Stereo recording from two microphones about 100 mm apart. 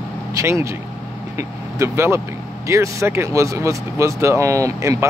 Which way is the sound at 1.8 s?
25° right (ahead or behind).